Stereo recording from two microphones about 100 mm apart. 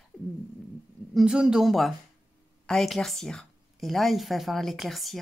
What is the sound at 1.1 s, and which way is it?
A woman's voice, 10° right (ahead or behind).